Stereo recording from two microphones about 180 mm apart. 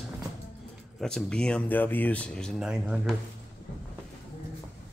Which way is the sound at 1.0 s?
5° left (ahead or behind).